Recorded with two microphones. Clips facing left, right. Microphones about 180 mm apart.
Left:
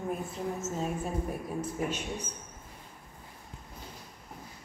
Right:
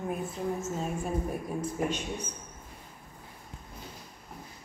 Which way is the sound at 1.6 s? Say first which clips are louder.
Right 2 dB; 5° left (ahead or behind).